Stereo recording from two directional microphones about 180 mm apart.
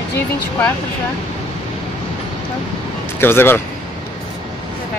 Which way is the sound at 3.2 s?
10° left (ahead or behind).